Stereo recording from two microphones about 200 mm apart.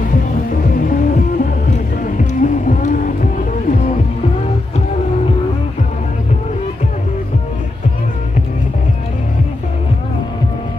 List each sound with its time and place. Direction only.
0.8 s music: 45° left (ahead or behind)